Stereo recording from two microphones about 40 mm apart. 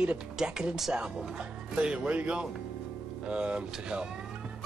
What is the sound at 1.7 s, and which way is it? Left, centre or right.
Speech, centre.